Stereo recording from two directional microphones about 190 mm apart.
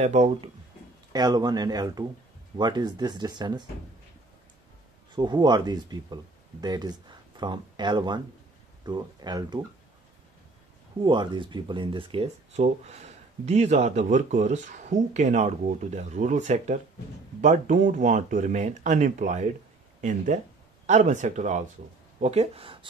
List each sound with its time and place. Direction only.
0.0 s speech: 35° right (ahead or behind)
1.1 s speech: 20° right (ahead or behind)
5.1 s speech: 25° right (ahead or behind)
11.0 s speech: 25° right (ahead or behind)